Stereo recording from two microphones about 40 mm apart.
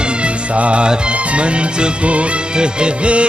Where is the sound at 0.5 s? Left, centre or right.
Right.